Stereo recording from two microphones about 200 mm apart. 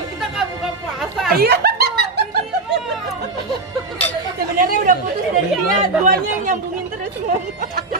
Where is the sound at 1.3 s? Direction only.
50° right (ahead or behind).